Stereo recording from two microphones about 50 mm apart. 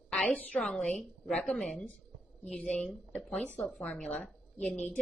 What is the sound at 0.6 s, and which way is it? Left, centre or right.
A woman's voice, centre.